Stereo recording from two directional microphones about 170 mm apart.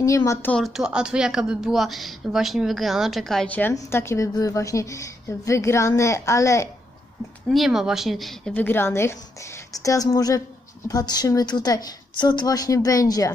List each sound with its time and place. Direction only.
0.0 s speech: 20° left (ahead or behind)
7.4 s a woman's voice: centre (ahead or behind); by 13.3 s 20° left (ahead or behind)